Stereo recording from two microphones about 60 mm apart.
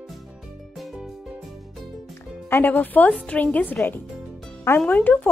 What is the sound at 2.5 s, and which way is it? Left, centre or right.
A woman's voice, left.